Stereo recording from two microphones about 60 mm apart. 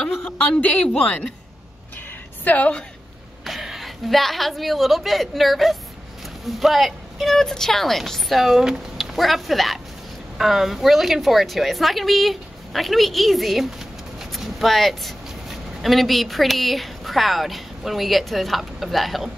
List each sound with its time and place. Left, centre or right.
0.2 s speech: left
2.4 s a woman's voice: left
3.4 s a woman's voice: centre
9.1 s a woman's voice: centre